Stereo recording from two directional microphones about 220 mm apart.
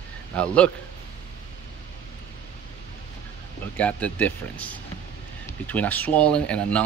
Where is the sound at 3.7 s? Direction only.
5° left (ahead or behind).